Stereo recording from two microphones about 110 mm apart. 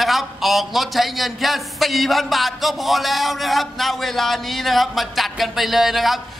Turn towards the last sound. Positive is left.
turn(degrees=0)  # may be behind; listen again after turning